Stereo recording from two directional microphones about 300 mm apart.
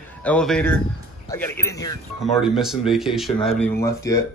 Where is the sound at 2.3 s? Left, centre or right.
Centre.